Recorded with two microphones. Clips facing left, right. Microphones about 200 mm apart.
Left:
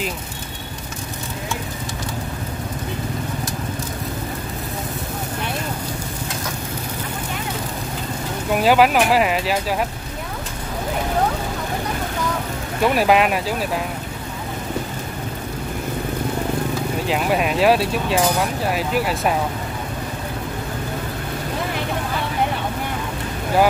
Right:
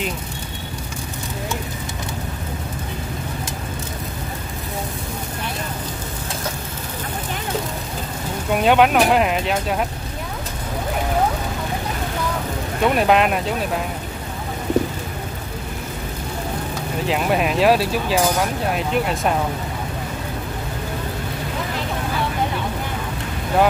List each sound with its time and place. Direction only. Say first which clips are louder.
8.5 s speech: even; centre (ahead or behind)
12.8 s speech: even; 5° left (ahead or behind)
17.0 s speech: right 2 dB; centre (ahead or behind)